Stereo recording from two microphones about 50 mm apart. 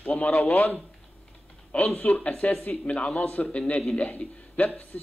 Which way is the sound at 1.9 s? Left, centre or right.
Left.